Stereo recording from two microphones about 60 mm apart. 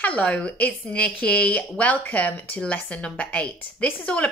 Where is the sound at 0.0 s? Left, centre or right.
Left.